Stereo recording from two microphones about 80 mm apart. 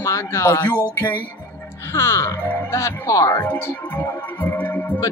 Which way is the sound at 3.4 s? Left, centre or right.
Left.